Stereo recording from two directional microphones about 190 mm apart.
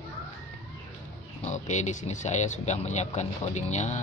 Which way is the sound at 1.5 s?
40° left (ahead or behind).